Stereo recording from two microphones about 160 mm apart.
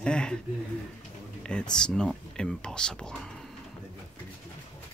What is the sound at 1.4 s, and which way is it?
Speech, 5° left (ahead or behind).